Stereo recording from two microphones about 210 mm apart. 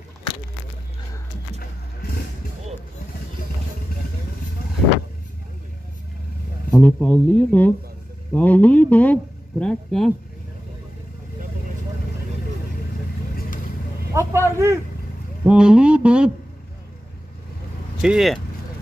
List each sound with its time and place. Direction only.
1.6 s roaring cats: 45° left (ahead or behind)
6.7 s speech: 5° left (ahead or behind)
14.1 s a man's voice: 15° right (ahead or behind)
18.0 s speech: centre (ahead or behind)